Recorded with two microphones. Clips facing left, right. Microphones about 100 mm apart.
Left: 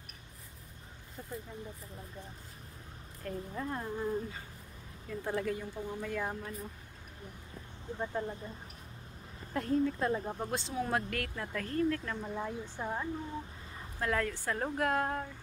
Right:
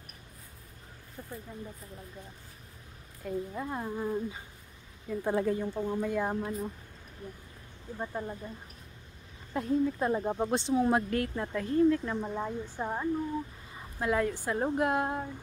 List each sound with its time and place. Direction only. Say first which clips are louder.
3.3 s speech: right 3 dB; 10° right (ahead or behind)
8.0 s speech: even; 5° right (ahead or behind)
9.5 s speech: right 2 dB; 15° right (ahead or behind)